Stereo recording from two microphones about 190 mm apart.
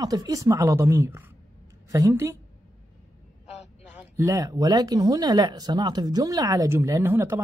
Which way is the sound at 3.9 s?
15° right (ahead or behind).